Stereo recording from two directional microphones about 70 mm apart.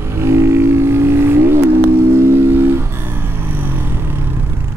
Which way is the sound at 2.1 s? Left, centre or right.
Right.